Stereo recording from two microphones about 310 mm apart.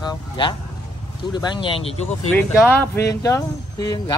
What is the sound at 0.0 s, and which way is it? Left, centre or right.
Vehicle, centre.